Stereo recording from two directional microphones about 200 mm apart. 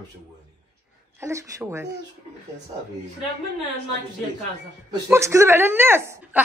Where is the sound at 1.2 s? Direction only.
15° right (ahead or behind).